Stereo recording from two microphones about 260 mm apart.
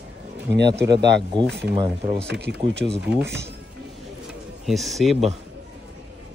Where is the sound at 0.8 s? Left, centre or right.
Right.